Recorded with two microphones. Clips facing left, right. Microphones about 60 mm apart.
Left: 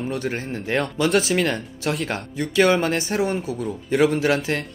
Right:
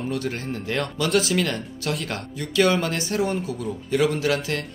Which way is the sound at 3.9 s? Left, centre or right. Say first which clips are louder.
Left 3 dB; left.